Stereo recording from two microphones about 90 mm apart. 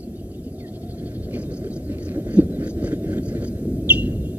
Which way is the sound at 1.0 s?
15° right (ahead or behind).